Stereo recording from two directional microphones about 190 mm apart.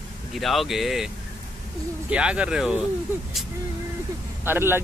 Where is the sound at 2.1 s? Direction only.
5° right (ahead or behind).